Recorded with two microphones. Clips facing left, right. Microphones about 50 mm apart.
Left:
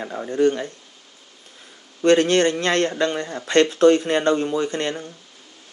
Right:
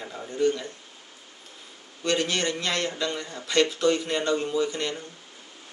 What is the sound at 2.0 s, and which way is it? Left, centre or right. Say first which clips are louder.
Speech: left 10 dB; left.